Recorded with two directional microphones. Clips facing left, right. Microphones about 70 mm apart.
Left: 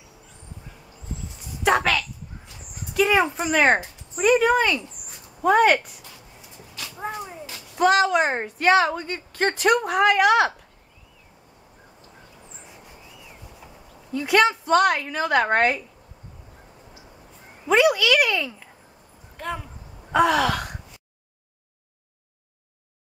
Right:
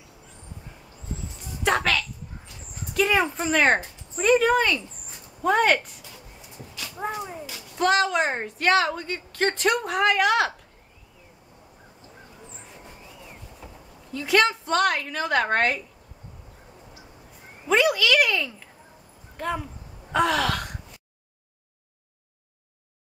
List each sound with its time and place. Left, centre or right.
1.4 s a sound: centre
2.9 s speech: centre
7.0 s speech: centre
13.6 s a sound: centre
14.1 s a woman's voice: centre
17.6 s a woman's voice: centre